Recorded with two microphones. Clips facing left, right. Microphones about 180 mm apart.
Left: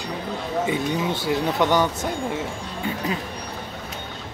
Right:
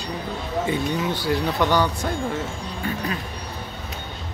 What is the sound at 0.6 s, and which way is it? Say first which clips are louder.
Speech: even; 20° left (ahead or behind).